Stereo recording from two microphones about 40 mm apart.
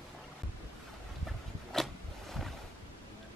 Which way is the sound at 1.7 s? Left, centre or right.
Centre.